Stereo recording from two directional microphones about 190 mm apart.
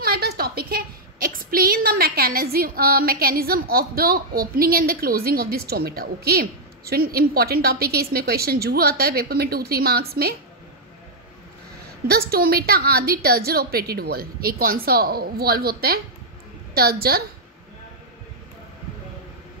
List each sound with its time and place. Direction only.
0.0 s a woman's voice: 55° right (ahead or behind)
12.1 s a woman's voice: 55° right (ahead or behind)